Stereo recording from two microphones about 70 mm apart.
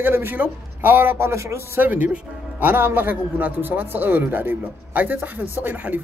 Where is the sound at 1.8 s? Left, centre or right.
Right.